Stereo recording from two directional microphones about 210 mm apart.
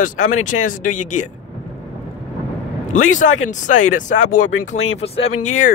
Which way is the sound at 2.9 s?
35° left (ahead or behind).